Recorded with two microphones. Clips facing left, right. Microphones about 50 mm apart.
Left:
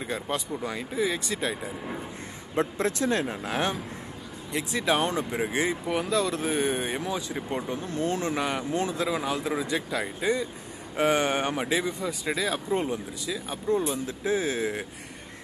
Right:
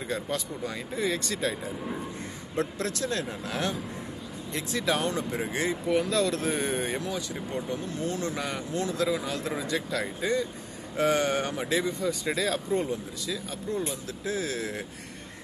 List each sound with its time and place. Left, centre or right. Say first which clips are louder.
0.0 s speech: left 1 dB; centre
0.9 s speech: left 1 dB; centre
2.5 s speech: left 4 dB; left
4.5 s speech: left 2 dB; centre
7.0 s speech: left 2 dB; left
7.5 s speech: left 2 dB; left; by 12.5 s centre
12.5 s speech: left 1 dB; left